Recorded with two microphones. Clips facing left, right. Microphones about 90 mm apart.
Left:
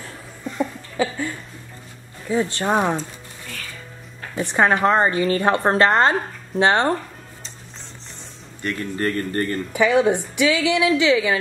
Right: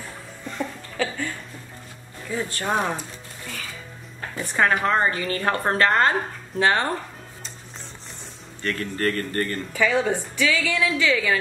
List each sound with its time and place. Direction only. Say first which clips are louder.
0.4 s laughter: left 5 dB; centre (ahead or behind)
0.9 s a woman's voice: left 4 dB; 10° left (ahead or behind)
3.0 s music: left 4 dB; 5° right (ahead or behind)
4.4 s a woman's voice: left 4 dB; 25° left (ahead or behind)
8.6 s a woman's voice: left 1 dB; 15° left (ahead or behind)
9.7 s a woman's voice: left 6 dB; 15° left (ahead or behind)